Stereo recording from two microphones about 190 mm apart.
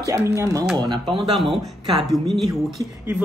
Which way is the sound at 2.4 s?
Centre (ahead or behind).